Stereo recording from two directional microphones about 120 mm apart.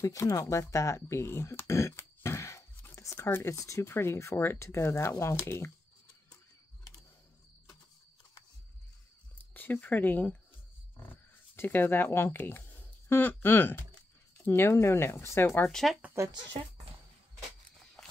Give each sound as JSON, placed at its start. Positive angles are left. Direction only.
{"t": 0.0, "sound": "speech", "side_deg": 25}
{"t": 9.5, "sound": "speech", "side_deg": 15}
{"t": 11.5, "sound": "speech", "side_deg": 15}
{"t": 15.7, "sound": "speech", "side_deg": 0}